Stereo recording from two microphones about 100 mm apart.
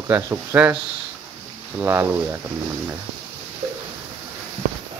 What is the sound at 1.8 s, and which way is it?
Speech, 25° right (ahead or behind).